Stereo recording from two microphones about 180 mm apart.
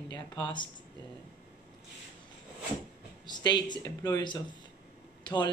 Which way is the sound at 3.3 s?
25° left (ahead or behind).